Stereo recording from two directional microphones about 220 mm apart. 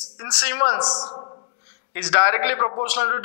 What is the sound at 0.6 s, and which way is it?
A man's voice, 20° left (ahead or behind).